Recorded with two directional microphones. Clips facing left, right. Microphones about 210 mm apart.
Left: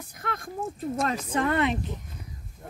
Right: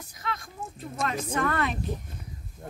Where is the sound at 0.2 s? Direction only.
50° left (ahead or behind).